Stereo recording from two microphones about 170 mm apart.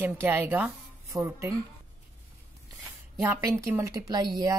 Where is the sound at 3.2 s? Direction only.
20° right (ahead or behind).